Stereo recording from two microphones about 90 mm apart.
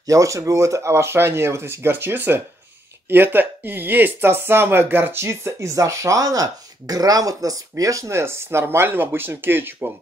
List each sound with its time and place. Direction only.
0.0 s speech: 35° right (ahead or behind)